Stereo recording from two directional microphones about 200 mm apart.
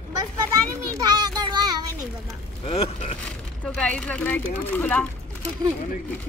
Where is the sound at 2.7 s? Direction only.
30° left (ahead or behind).